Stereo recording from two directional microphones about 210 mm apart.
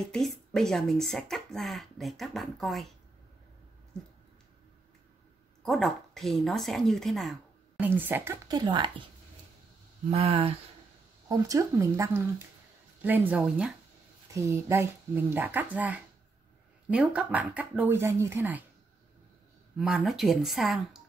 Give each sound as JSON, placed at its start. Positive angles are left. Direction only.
{"t": 0.0, "sound": "speech", "side_deg": 0}
{"t": 5.6, "sound": "speech", "side_deg": 0}
{"t": 10.1, "sound": "speech", "side_deg": -25}
{"t": 11.2, "sound": "speech", "side_deg": -15}
{"t": 19.8, "sound": "speech", "side_deg": 0}